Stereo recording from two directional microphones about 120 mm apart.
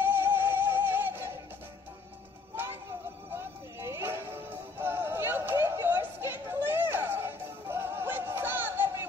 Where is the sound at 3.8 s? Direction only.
20° right (ahead or behind).